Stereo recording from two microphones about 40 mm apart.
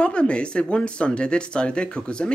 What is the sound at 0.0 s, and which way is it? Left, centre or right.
Speech, left.